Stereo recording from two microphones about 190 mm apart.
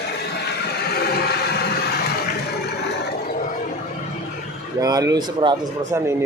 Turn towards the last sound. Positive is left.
turn(degrees=-20)  # may be behind; listen again after turning